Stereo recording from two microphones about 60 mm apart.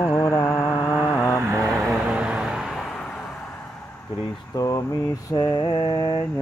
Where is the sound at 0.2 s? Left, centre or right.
Left.